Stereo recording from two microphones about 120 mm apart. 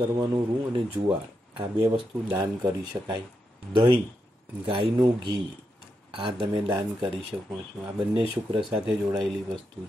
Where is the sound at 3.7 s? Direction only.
45° right (ahead or behind).